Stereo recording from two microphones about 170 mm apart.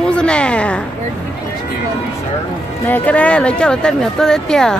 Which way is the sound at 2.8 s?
10° left (ahead or behind).